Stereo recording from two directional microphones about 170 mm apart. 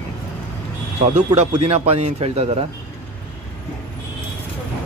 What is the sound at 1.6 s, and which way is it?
Speech, 40° right (ahead or behind).